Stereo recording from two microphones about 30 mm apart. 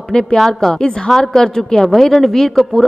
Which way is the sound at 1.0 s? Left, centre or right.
Centre.